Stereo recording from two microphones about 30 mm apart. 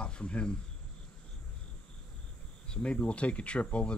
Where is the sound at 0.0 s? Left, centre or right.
Left.